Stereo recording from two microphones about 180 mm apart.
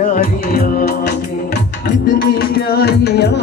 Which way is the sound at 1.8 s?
55° left (ahead or behind).